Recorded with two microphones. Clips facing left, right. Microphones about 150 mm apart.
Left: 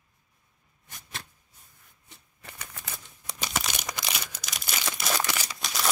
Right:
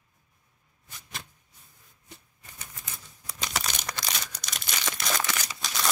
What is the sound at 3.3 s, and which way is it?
Crumpling, 5° left (ahead or behind).